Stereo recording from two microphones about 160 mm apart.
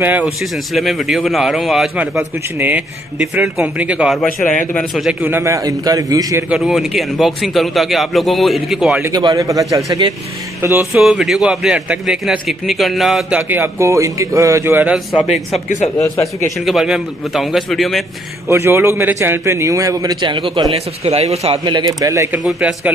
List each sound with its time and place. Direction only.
0.0 s a man's voice: 5° right (ahead or behind)
5.2 s a man's voice: 15° right (ahead or behind)
6.5 s a man's voice: centre (ahead or behind)
9.0 s a man's voice: 25° right (ahead or behind)
11.0 s a man's voice: centre (ahead or behind)
13.4 s a man's voice: 15° right (ahead or behind)
15.5 s speech: 45° left (ahead or behind)
16.6 s a man's voice: 5° right (ahead or behind)
18.5 s a man's voice: 15° right (ahead or behind); by 21.5 s 40° right (ahead or behind)
21.6 s a man's voice: 25° right (ahead or behind)
22.4 s a man's voice: centre (ahead or behind)